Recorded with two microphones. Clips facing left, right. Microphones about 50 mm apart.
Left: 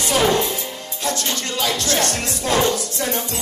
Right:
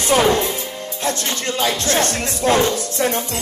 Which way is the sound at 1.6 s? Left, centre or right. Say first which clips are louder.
Right 2 dB; right.